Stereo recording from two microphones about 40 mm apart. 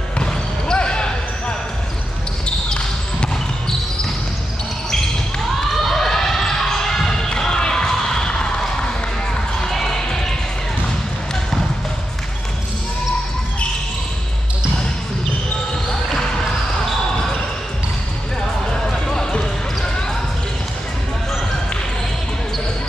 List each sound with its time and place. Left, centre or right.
0.2 s basketball bounce: left
2.4 s basketball bounce: left
5.7 s basketball bounce: centre
7.2 s a sound: centre
9.6 s basketball bounce: centre
18.7 s music: centre